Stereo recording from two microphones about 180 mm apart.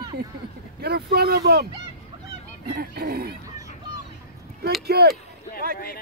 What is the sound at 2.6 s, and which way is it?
Speech, 65° right (ahead or behind).